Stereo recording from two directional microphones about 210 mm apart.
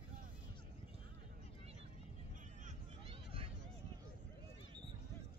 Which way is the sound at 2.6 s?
30° right (ahead or behind).